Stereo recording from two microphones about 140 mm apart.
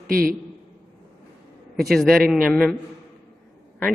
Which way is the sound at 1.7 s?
5° left (ahead or behind).